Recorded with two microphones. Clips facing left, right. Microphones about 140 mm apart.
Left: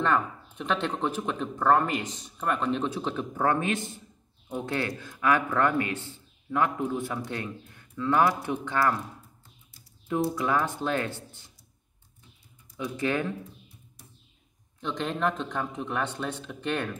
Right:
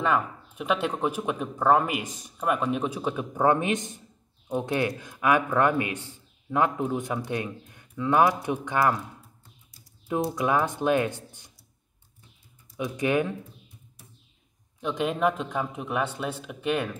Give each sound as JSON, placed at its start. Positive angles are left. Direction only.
{"t": 0.0, "sound": "a man's voice", "side_deg": -10}
{"t": 10.0, "sound": "speech", "side_deg": -20}
{"t": 12.7, "sound": "speech", "side_deg": -15}
{"t": 14.8, "sound": "speech", "side_deg": -10}